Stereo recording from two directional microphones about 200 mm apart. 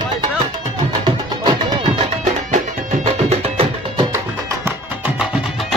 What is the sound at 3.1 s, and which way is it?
Music, 30° right (ahead or behind).